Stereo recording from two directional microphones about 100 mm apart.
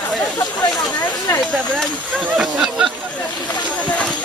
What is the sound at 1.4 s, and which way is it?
Speech, centre (ahead or behind).